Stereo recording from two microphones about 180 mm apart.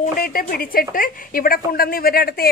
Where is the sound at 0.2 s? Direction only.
55° left (ahead or behind).